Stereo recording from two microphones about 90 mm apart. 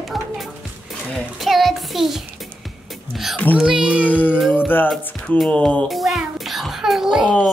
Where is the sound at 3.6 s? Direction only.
10° right (ahead or behind).